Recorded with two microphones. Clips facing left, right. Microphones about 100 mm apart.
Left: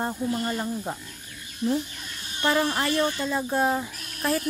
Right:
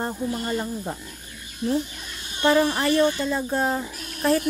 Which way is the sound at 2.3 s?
15° right (ahead or behind).